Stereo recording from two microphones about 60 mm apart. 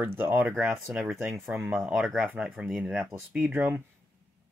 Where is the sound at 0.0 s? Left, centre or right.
Right.